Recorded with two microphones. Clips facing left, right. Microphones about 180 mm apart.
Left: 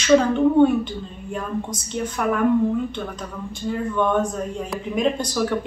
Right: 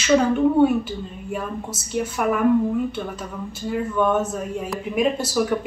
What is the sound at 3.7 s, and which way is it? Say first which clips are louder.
A man's voice: right 1 dB; 5° right (ahead or behind).